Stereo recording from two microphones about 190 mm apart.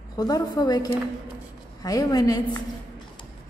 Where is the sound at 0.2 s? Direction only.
20° left (ahead or behind).